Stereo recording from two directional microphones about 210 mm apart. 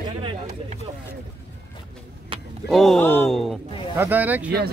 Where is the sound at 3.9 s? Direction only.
10° right (ahead or behind).